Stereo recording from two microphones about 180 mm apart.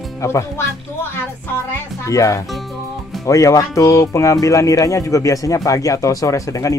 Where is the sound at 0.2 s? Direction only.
15° left (ahead or behind).